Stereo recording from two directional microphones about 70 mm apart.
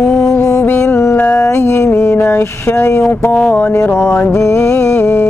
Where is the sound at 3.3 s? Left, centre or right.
Centre.